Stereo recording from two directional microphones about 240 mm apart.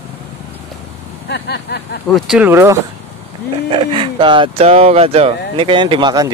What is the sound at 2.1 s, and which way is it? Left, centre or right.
Speech, centre.